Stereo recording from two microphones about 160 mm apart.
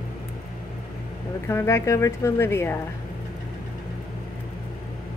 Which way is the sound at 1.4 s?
15° left (ahead or behind).